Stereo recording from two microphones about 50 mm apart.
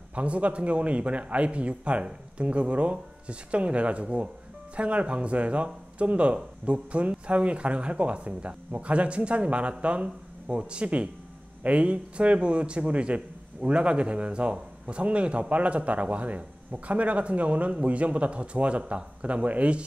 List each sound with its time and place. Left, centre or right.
0.1 s a man's voice: right